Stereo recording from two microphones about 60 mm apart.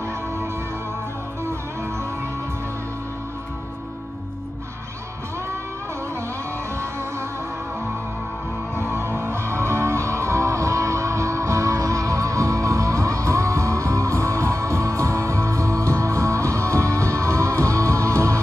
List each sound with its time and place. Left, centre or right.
8.7 s music: right